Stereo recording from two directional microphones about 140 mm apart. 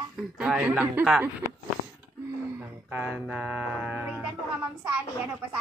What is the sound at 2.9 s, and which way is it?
Speech, 15° right (ahead or behind).